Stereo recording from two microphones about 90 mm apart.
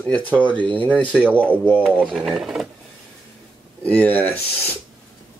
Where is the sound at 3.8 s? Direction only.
15° left (ahead or behind).